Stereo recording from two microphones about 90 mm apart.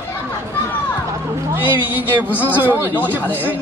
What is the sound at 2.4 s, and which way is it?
Speech, 20° right (ahead or behind).